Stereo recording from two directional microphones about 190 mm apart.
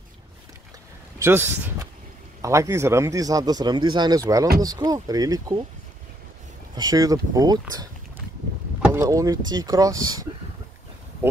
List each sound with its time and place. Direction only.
1.2 s speech: 15° right (ahead or behind)
6.7 s speech: 20° right (ahead or behind)